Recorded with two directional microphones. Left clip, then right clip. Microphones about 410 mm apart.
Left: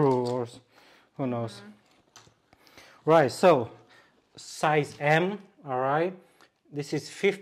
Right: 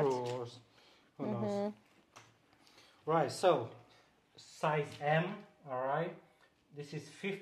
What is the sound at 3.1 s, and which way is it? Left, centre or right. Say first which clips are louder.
Speech: left 11 dB; left.